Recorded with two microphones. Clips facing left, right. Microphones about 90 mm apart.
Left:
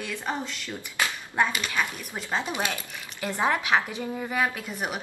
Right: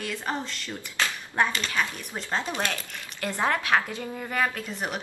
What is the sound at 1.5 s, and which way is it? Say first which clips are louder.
A woman's voice: even; 15° left (ahead or behind).